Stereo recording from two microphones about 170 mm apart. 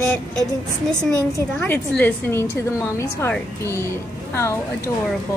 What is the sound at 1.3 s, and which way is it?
A woman's voice, 10° left (ahead or behind).